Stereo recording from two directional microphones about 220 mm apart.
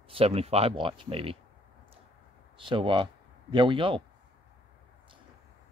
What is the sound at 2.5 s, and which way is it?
Speech, 25° right (ahead or behind).